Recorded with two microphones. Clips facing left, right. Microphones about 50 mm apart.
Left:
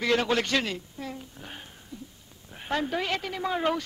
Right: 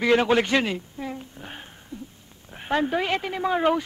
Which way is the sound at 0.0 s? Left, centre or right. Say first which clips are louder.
Right 5 dB; centre.